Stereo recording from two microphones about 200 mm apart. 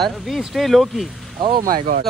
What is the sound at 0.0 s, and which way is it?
Speech, centre (ahead or behind).